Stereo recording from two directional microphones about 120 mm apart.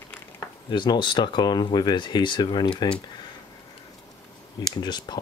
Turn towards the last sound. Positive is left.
turn(degrees=35)  # may be behind; listen again after turning